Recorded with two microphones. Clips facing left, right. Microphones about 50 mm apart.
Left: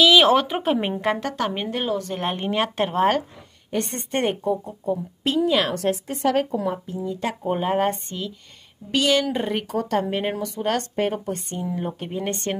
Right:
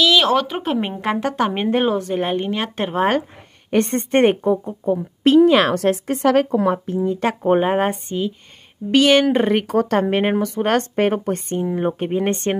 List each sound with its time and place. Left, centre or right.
0.0 s speech: centre
1.1 s a woman's voice: centre
2.0 s speech: centre
2.3 s speech: centre
3.7 s speech: right
7.2 s a woman's voice: right
7.6 s a woman's voice: right
8.9 s a woman's voice: right
11.4 s speech: right